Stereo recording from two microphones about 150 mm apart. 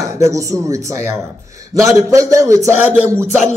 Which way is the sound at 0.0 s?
20° right (ahead or behind).